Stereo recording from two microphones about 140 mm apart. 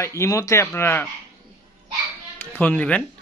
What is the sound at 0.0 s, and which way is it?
Speech, 20° left (ahead or behind).